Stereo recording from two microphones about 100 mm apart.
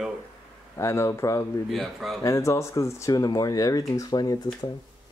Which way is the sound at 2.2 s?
30° left (ahead or behind).